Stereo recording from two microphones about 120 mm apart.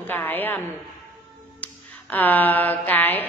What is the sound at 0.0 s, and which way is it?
Speech, 15° left (ahead or behind).